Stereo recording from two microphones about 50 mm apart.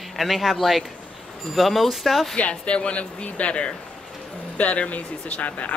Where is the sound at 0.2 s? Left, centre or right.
Centre.